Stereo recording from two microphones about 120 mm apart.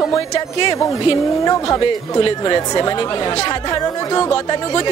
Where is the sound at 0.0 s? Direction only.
25° left (ahead or behind).